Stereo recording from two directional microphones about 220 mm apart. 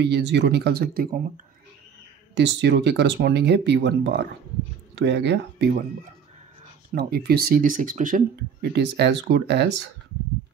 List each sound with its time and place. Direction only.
0.0 s speech: 50° right (ahead or behind)
2.3 s speech: 50° right (ahead or behind)
7.0 s speech: 45° right (ahead or behind)
8.7 s speech: 50° right (ahead or behind)